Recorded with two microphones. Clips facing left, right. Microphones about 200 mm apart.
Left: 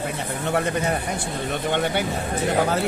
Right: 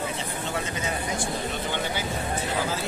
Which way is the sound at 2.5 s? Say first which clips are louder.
Left 10 dB; 60° left (ahead or behind).